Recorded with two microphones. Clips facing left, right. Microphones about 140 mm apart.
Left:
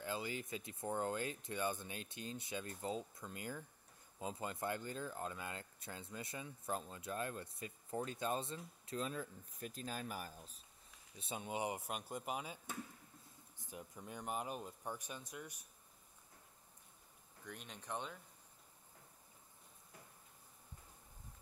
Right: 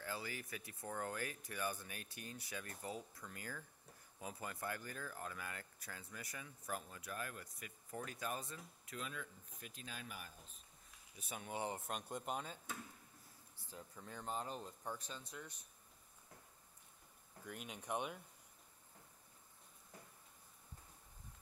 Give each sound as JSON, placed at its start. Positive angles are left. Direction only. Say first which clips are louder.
{"t": 0.0, "sound": "speech", "louder": "left 4 dB", "side_deg": 20}
{"t": 11.1, "sound": "speech", "louder": "left 3 dB", "side_deg": 25}
{"t": 13.6, "sound": "speech", "louder": "left 3 dB", "side_deg": 15}
{"t": 17.5, "sound": "speech", "louder": "right 2 dB", "side_deg": -5}